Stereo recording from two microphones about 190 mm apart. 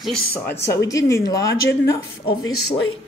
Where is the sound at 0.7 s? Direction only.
15° left (ahead or behind).